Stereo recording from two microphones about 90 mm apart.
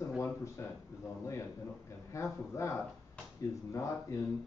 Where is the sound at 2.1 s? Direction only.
35° left (ahead or behind).